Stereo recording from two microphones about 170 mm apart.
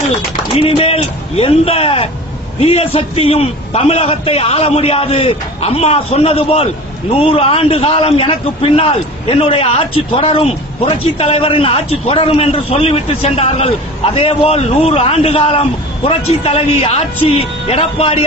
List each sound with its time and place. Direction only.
0.6 s a man's voice: 35° left (ahead or behind)